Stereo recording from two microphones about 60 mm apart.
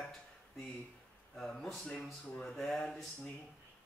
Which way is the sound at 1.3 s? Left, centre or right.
Centre.